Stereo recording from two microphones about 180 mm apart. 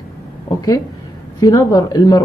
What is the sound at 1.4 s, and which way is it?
Speech, 20° left (ahead or behind).